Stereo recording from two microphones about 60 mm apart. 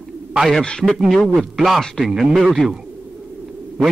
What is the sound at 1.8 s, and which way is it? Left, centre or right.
Speech, centre.